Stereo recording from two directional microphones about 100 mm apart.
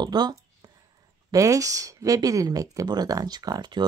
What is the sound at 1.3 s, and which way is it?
Speech, 35° right (ahead or behind).